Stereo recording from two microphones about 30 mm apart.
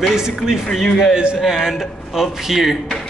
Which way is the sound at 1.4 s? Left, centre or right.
Centre.